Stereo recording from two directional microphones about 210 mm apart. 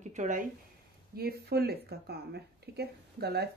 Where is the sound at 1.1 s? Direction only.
45° right (ahead or behind).